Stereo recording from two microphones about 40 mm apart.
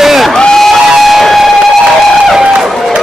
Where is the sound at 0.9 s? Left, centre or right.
Centre.